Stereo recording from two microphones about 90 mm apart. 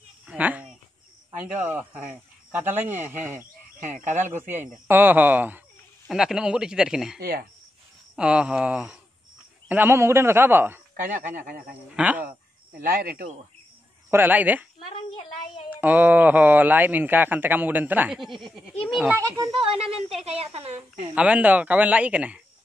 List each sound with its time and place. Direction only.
0.3 s a sound: 15° right (ahead or behind)
1.4 s speech: 20° right (ahead or behind)
6.0 s speech: 5° right (ahead or behind)
8.2 s speech: 10° right (ahead or behind)
9.7 s speech: 25° right (ahead or behind)
11.9 s speech: 15° right (ahead or behind)
14.1 s speech: 20° right (ahead or behind)
14.9 s child singing: 85° left
15.7 s speech: 20° right (ahead or behind)
18.1 s speech: centre (ahead or behind)
19.1 s speech: 35° right (ahead or behind)
19.5 s speech: 90° right
21.1 s speech: 15° right (ahead or behind)